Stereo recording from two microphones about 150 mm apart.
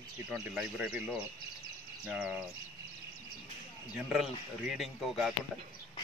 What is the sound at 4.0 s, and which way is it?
Speech, 5° right (ahead or behind).